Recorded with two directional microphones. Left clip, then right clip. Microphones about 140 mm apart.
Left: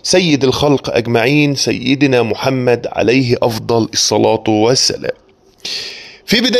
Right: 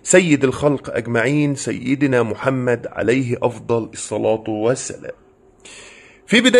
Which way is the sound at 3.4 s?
60° left (ahead or behind).